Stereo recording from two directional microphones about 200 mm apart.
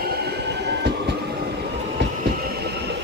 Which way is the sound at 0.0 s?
55° right (ahead or behind).